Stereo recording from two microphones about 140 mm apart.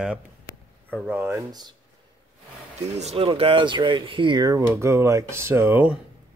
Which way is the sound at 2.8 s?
50° right (ahead or behind).